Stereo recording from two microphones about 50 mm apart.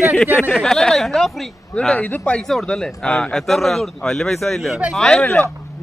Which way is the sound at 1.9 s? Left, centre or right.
Left.